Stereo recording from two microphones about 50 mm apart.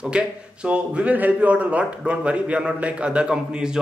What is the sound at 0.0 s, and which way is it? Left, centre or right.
A man's voice, right.